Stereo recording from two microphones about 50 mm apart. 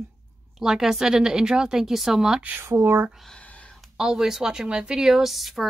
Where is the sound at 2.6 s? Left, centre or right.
Right.